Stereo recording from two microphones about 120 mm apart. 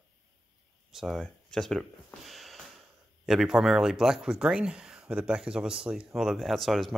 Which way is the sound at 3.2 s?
5° right (ahead or behind).